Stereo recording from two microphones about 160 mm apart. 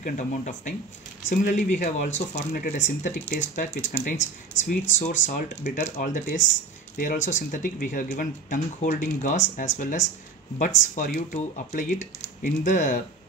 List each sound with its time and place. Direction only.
0.0 s speech: 55° left (ahead or behind)